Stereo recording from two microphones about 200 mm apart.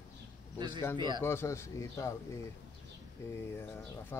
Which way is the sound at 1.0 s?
20° right (ahead or behind).